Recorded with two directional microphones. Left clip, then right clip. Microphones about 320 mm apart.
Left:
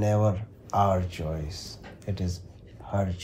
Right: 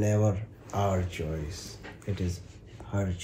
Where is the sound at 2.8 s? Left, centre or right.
Centre.